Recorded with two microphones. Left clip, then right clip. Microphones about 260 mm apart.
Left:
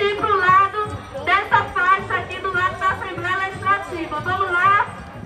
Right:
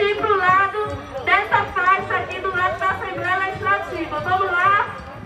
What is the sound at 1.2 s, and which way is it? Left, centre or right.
Music, centre.